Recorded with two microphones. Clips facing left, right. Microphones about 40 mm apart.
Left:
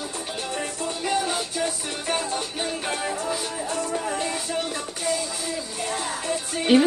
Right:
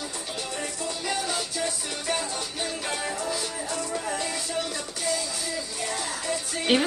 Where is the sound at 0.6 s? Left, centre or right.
Left.